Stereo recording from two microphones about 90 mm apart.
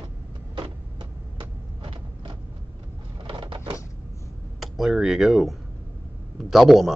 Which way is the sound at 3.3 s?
70° right (ahead or behind).